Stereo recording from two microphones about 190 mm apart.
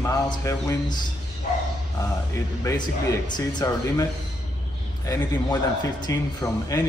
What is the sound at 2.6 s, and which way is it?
A man's voice, 20° left (ahead or behind).